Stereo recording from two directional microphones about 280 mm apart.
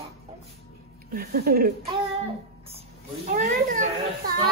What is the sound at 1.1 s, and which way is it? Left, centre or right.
Speech, right.